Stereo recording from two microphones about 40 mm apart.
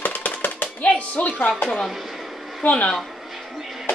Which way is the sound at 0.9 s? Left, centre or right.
Left.